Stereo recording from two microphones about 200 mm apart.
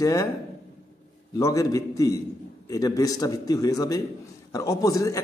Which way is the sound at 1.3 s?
15° left (ahead or behind).